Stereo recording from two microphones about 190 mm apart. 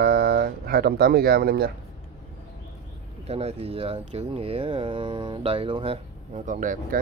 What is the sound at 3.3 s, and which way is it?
Speech, 35° right (ahead or behind).